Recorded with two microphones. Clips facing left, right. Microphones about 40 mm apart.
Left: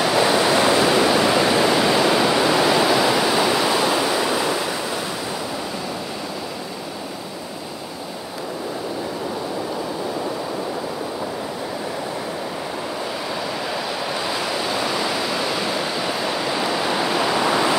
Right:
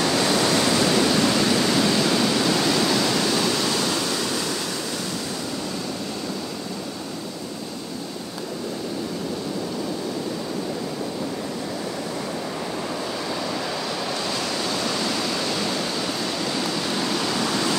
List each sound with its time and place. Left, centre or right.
0.0 s waves: centre
14.2 s waves: centre